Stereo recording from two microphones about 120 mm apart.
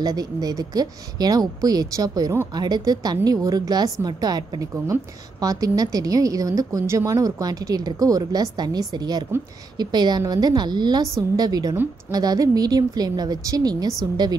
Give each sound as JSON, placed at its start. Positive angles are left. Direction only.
{"t": 0.0, "sound": "a woman's voice", "side_deg": -30}